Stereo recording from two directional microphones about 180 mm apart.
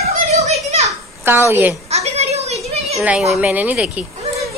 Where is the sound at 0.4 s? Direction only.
35° right (ahead or behind).